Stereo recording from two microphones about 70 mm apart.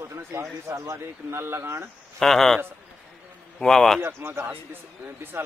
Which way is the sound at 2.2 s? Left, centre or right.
Centre.